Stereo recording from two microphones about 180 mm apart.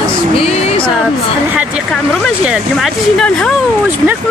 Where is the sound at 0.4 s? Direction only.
35° left (ahead or behind).